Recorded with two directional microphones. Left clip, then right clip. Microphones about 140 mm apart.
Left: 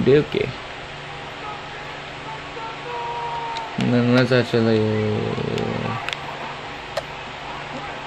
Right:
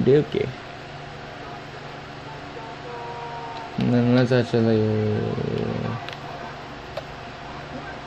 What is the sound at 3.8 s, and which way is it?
Speech, 20° left (ahead or behind).